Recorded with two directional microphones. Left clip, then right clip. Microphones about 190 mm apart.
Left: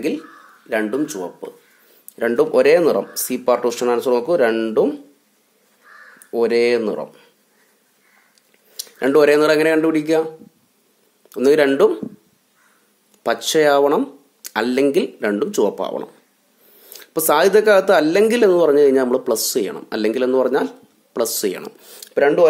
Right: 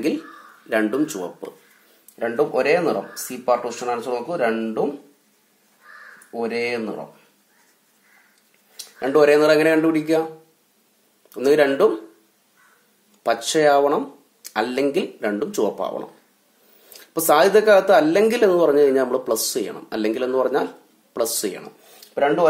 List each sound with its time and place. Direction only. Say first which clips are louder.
0.7 s speech: even; 10° left (ahead or behind)
2.1 s speech: left 5 dB; 50° left (ahead or behind)
6.3 s speech: left 8 dB; 60° left (ahead or behind)
8.7 s speech: left 3 dB; 45° left (ahead or behind); by 10.2 s 30° left (ahead or behind)
11.2 s speech: left 2 dB; 30° left (ahead or behind)
13.2 s speech: left 2 dB; 30° left (ahead or behind)
22.1 s speech: left 4 dB; 55° left (ahead or behind)